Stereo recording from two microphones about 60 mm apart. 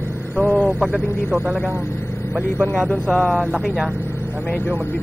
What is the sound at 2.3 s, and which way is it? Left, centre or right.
Speech, right.